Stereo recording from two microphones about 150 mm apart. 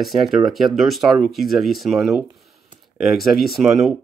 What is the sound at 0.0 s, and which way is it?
Speech, centre (ahead or behind).